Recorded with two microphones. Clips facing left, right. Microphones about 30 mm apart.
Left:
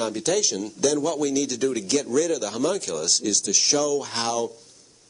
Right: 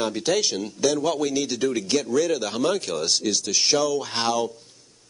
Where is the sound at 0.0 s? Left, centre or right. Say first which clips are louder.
Right 1 dB; centre.